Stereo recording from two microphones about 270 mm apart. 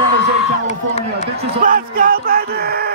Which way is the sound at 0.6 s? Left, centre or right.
Left.